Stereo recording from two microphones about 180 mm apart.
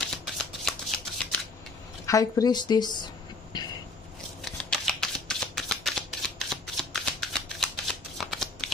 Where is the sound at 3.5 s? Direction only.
25° left (ahead or behind).